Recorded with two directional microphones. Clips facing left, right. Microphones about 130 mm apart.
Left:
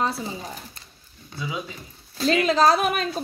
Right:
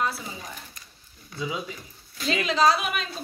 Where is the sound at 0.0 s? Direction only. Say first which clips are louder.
Left 3 dB; 30° left (ahead or behind).